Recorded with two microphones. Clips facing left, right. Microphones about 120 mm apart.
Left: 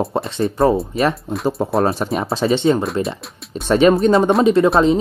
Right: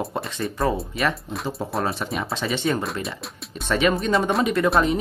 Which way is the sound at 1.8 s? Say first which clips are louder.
Left 7 dB; 40° left (ahead or behind).